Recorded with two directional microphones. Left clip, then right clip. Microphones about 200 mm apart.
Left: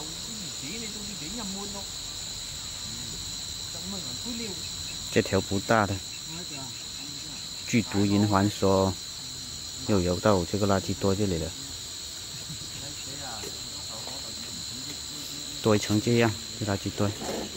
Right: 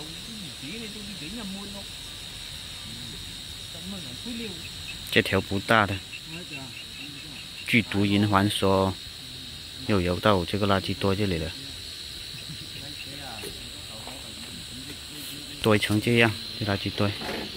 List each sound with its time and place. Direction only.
5.1 s speech: centre (ahead or behind)
7.7 s speech: centre (ahead or behind)
15.6 s speech: 5° right (ahead or behind)
17.2 s cricket: 40° right (ahead or behind)